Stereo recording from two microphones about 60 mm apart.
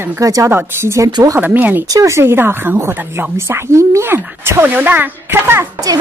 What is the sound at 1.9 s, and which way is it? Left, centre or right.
Speech, right.